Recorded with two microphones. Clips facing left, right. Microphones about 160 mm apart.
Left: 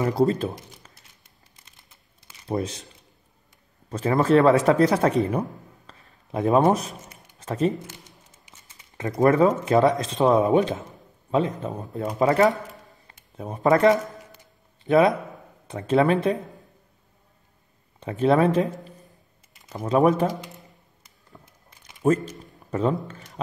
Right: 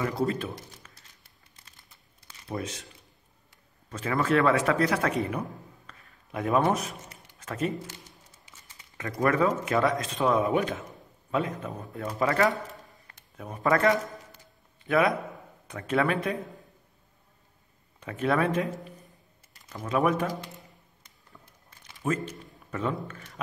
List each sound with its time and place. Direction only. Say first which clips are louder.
0.0 s speech: left 7 dB; 30° left (ahead or behind)
2.4 s speech: left 7 dB; 35° left (ahead or behind)
3.9 s speech: left 7 dB; 35° left (ahead or behind)
5.9 s a sound: left 7 dB; 30° left (ahead or behind)
8.5 s speech: left 1 dB; 20° left (ahead or behind)
18.0 s speech: left 7 dB; 25° left (ahead or behind)
19.7 s speech: left 6 dB; 25° left (ahead or behind)
22.1 s a man's voice: left 7 dB; 30° left (ahead or behind)